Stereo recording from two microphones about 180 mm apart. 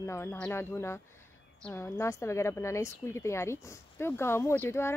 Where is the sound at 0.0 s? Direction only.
15° left (ahead or behind).